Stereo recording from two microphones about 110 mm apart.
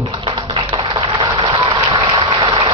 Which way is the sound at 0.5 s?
50° right (ahead or behind).